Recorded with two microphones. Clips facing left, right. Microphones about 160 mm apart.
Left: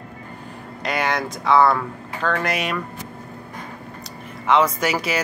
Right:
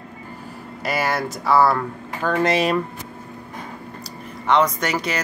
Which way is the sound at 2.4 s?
30° right (ahead or behind).